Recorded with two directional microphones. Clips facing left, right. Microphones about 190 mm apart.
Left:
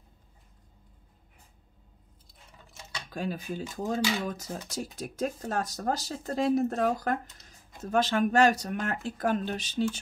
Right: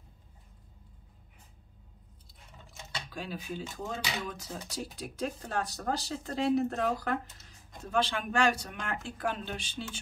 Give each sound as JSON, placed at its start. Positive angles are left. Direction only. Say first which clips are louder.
{"t": 3.1, "sound": "speech", "louder": "left 6 dB", "side_deg": 45}